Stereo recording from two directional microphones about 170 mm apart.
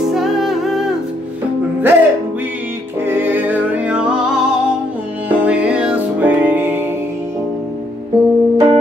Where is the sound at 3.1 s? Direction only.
10° right (ahead or behind).